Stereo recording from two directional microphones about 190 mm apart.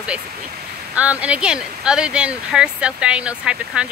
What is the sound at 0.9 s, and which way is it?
Speech, 5° right (ahead or behind).